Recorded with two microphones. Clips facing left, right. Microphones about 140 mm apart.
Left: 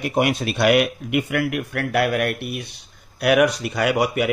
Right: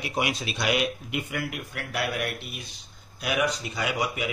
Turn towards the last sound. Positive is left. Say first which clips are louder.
# left 9 dB
turn(degrees=65)  # may be behind; listen again after turning